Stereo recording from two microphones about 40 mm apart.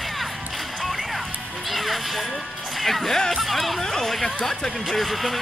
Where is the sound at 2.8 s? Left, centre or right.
Centre.